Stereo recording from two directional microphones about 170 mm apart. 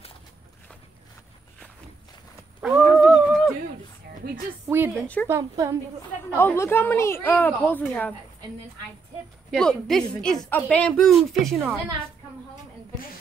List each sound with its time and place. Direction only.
2.6 s a sound: centre (ahead or behind)
4.6 s a woman's voice: 10° right (ahead or behind)
5.0 s a woman's voice: 10° left (ahead or behind)
5.3 s a woman's voice: 15° right (ahead or behind)
6.3 s a woman's voice: 15° left (ahead or behind)
9.5 s speech: 5° left (ahead or behind)